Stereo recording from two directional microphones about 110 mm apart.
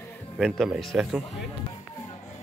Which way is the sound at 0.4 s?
Centre (ahead or behind).